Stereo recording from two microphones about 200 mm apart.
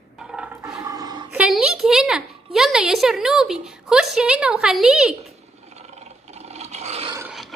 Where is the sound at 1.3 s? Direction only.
5° right (ahead or behind).